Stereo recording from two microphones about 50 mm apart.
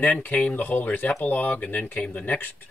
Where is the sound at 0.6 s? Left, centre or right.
Left.